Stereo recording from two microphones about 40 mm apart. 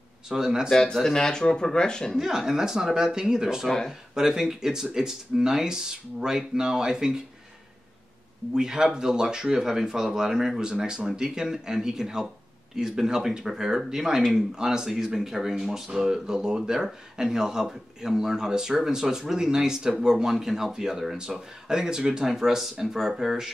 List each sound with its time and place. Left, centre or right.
0.3 s speech: centre
0.7 s speech: centre
2.1 s speech: centre
3.6 s speech: centre
4.1 s speech: centre
8.5 s speech: centre